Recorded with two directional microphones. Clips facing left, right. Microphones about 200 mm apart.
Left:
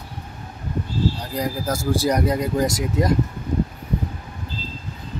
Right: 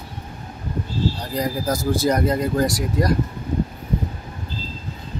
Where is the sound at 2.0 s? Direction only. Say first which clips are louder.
Right 1 dB; 15° left (ahead or behind).